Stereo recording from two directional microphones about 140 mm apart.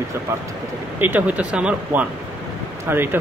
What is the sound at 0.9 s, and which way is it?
Speech, 15° right (ahead or behind).